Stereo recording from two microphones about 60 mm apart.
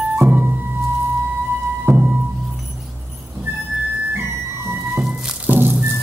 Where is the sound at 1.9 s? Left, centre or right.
Right.